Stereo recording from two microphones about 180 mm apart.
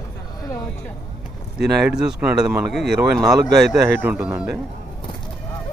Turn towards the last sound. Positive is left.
turn(degrees=-5)  # may be behind; listen again after turning